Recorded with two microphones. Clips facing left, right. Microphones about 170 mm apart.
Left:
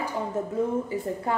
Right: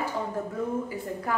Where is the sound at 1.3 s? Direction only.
25° left (ahead or behind).